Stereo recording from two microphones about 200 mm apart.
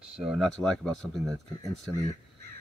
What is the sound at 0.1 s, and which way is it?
Speech, centre (ahead or behind).